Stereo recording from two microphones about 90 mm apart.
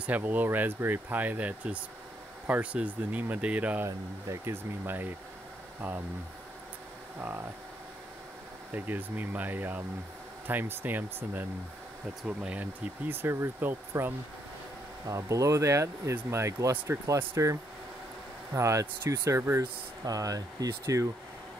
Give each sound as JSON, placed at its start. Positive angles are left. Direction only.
{"t": 0.0, "sound": "speech", "side_deg": -20}
{"t": 3.8, "sound": "speech", "side_deg": -30}
{"t": 7.2, "sound": "speech", "side_deg": -20}
{"t": 8.7, "sound": "speech", "side_deg": -20}
{"t": 15.0, "sound": "speech", "side_deg": -35}
{"t": 18.5, "sound": "speech", "side_deg": -35}
{"t": 20.1, "sound": "speech", "side_deg": -40}